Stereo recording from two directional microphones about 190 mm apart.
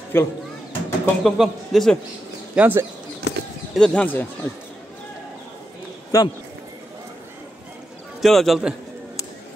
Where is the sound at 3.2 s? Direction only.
60° left (ahead or behind).